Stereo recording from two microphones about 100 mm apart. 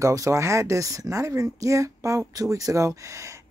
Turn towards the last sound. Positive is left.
turn(degrees=-30)  # may be behind; listen again after turning